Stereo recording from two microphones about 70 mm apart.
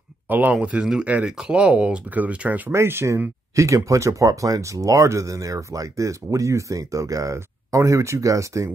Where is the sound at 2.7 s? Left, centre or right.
Right.